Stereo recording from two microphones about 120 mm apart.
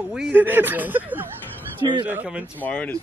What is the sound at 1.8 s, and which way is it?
Speech, 30° right (ahead or behind).